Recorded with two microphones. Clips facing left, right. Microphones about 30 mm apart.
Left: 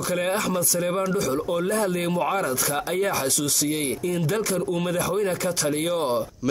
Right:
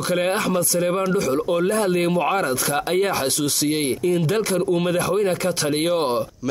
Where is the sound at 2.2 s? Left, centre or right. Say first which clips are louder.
Right 3 dB; right.